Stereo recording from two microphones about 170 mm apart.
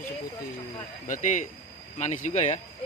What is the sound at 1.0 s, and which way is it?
Speech, 50° left (ahead or behind).